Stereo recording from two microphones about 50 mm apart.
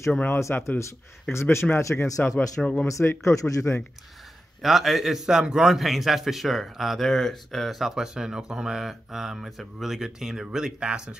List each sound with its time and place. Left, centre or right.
0.3 s speech: left
1.3 s speech: left
2.6 s speech: centre
2.9 s speech: left
4.6 s a man's voice: centre